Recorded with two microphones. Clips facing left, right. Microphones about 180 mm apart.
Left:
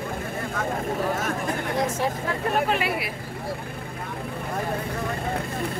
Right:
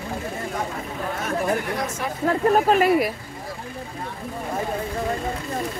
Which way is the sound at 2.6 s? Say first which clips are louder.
Right 8 dB; 45° right (ahead or behind).